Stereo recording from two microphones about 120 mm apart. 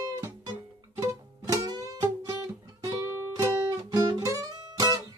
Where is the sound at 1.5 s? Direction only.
30° right (ahead or behind).